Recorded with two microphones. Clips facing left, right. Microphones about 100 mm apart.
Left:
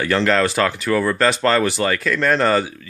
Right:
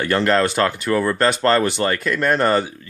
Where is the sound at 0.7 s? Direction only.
Centre (ahead or behind).